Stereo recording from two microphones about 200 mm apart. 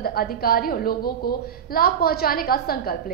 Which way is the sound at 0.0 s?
50° left (ahead or behind).